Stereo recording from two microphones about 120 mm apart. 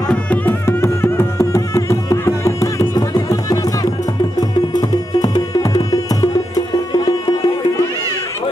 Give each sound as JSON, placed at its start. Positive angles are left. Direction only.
{"t": 0.3, "sound": "music", "side_deg": 20}